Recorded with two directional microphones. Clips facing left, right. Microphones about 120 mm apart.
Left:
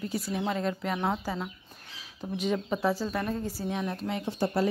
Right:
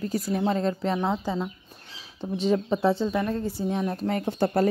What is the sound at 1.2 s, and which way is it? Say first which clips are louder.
Speech: right 5 dB; 10° right (ahead or behind).